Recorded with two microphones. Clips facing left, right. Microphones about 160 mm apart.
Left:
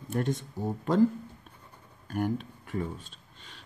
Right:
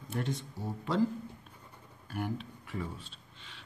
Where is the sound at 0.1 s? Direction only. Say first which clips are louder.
Left 6 dB; 50° left (ahead or behind).